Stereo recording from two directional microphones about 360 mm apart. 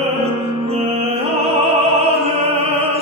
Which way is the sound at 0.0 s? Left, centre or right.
Centre.